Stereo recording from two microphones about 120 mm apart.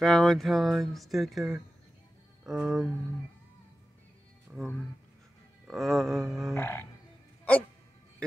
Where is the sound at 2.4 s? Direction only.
5° right (ahead or behind).